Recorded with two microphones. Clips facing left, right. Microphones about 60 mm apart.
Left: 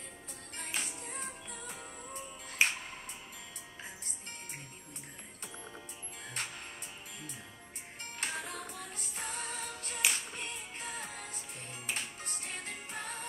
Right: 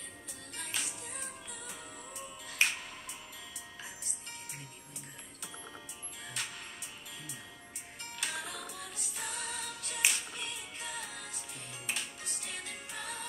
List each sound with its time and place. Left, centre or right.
0.7 s music: left
6.4 s music: left
8.0 s music: left